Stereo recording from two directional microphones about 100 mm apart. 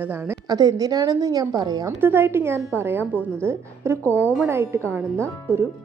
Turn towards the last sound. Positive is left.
turn(degrees=-25)  # may be behind; listen again after turning